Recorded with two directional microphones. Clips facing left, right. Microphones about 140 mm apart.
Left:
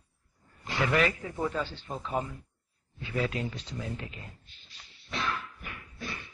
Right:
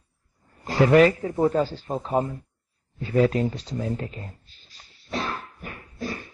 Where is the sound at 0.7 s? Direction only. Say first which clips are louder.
Right 11 dB; 40° right (ahead or behind).